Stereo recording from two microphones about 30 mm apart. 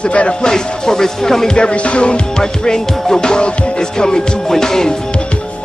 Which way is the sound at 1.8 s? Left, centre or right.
Left.